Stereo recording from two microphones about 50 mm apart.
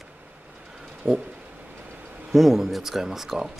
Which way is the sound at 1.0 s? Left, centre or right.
Centre.